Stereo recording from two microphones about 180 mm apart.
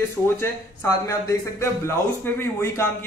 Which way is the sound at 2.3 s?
15° left (ahead or behind).